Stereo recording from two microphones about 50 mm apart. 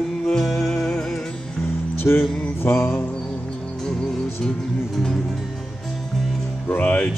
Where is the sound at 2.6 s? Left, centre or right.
Left.